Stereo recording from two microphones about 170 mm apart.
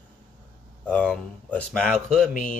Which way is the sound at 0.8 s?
10° left (ahead or behind).